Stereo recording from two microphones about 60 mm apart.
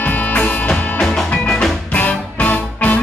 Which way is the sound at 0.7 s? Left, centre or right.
Centre.